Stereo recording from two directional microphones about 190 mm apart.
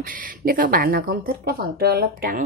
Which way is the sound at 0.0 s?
45° right (ahead or behind).